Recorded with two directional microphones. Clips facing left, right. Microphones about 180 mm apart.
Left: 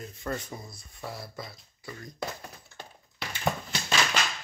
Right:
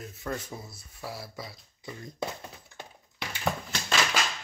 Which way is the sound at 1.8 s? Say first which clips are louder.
Right 2 dB; 20° right (ahead or behind).